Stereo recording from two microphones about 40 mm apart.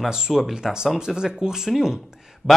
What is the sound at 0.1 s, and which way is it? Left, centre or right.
Speech, centre.